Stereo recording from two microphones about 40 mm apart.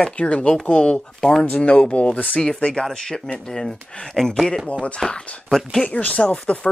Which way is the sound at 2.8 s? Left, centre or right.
Centre.